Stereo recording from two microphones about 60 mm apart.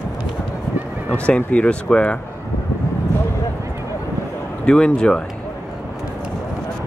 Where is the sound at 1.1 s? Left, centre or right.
Centre.